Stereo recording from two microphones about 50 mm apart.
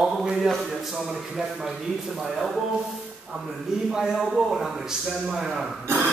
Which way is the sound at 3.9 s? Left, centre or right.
Centre.